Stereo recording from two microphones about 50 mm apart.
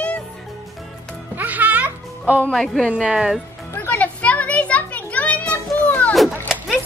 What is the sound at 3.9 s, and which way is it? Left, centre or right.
Children playing, left.